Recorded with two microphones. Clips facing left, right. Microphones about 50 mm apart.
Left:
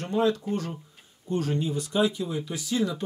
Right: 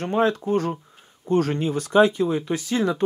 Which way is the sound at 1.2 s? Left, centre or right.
Right.